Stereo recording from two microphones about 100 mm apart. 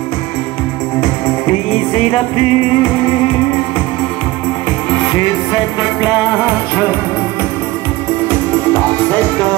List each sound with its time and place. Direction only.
2.3 s music: 55° left (ahead or behind)
8.3 s music: 15° left (ahead or behind)